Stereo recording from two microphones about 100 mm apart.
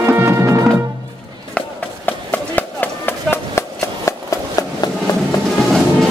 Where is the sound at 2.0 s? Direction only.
15° left (ahead or behind); by 4.9 s 35° left (ahead or behind).